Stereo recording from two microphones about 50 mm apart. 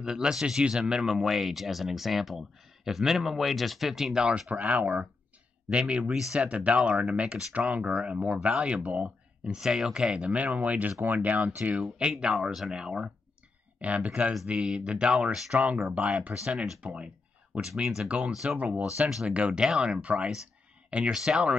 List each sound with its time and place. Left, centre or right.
0.0 s speech: centre
4.3 s speech: right
5.7 s speech: right
9.4 s speech: centre; by 11.8 s right
11.8 s speech: centre
13.7 s speech: right
16.4 s speech: centre
18.3 s speech: centre
18.6 s speech: right
21.1 s speech: centre